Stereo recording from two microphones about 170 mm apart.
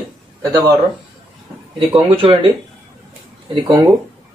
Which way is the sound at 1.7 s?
30° right (ahead or behind).